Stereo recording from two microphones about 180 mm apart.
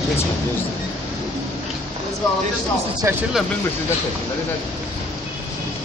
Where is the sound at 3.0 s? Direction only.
15° right (ahead or behind).